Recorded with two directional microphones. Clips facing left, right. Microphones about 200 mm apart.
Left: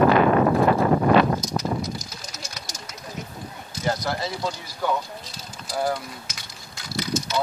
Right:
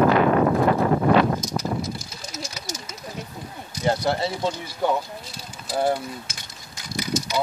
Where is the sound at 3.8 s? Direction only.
25° right (ahead or behind).